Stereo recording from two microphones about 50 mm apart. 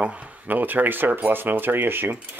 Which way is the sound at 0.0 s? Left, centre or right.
Right.